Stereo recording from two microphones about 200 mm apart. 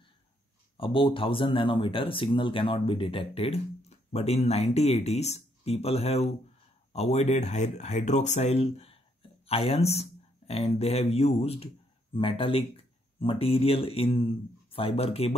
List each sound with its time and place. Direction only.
0.7 s speech: 25° left (ahead or behind)